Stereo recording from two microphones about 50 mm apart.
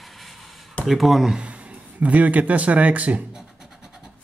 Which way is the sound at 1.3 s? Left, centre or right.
Right.